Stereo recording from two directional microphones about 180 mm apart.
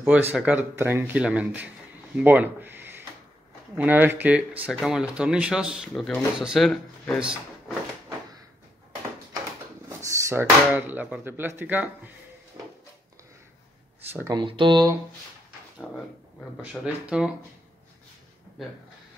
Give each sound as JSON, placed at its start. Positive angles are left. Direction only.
{"t": 0.0, "sound": "speech", "side_deg": -10}
{"t": 9.8, "sound": "speech", "side_deg": -15}
{"t": 12.6, "sound": "a sound", "side_deg": -20}
{"t": 14.2, "sound": "speech", "side_deg": -25}
{"t": 17.1, "sound": "speech", "side_deg": -5}